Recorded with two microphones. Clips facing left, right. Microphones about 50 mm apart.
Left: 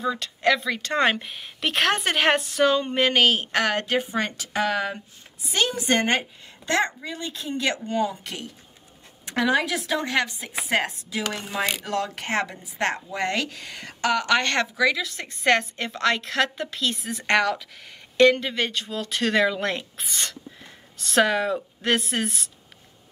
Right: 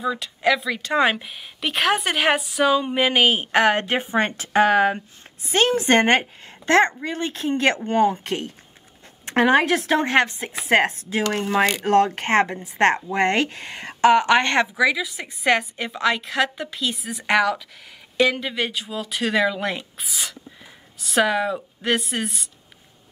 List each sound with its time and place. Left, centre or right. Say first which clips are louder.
0.0 s a woman's voice: right 1 dB; centre